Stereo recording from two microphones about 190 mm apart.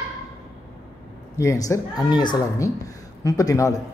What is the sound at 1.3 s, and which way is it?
A man's voice, 15° left (ahead or behind).